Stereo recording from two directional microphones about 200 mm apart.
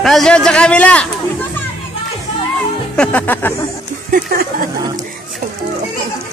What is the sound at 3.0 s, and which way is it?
Speech, 10° left (ahead or behind).